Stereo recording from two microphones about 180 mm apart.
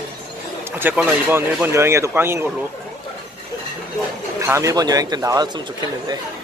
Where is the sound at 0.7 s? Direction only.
10° right (ahead or behind).